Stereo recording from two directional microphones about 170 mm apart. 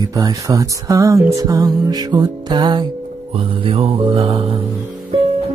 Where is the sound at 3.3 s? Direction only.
30° right (ahead or behind).